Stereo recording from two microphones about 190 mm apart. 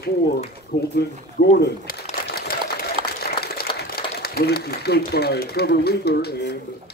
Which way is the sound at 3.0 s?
30° right (ahead or behind).